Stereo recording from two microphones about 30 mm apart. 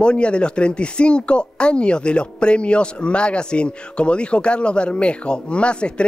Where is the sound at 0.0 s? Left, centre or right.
Left.